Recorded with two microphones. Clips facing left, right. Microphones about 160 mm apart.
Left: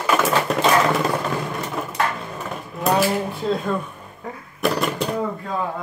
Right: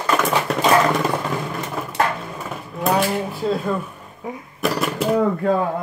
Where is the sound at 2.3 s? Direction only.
Centre (ahead or behind).